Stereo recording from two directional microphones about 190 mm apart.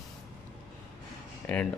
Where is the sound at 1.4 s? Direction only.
10° left (ahead or behind).